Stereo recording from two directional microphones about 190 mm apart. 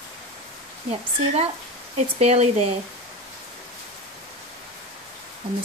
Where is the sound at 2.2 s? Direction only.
35° right (ahead or behind).